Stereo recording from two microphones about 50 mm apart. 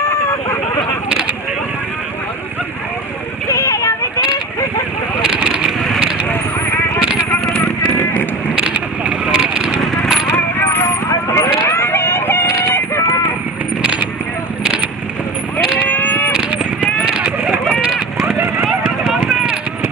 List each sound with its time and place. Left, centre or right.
3.4 s a sound: left
5.2 s vehicle: centre
8.0 s vehicle: left
8.5 s vehicle: right
10.6 s vehicle: left
11.2 s a sound: left
15.9 s sheep: left
17.0 s a sound: centre
18.7 s clip-clop: centre